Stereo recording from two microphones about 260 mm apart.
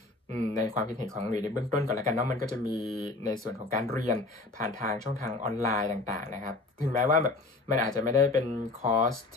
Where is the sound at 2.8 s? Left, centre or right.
Centre.